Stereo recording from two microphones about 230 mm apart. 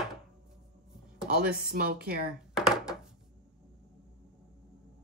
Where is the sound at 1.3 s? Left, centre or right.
Right.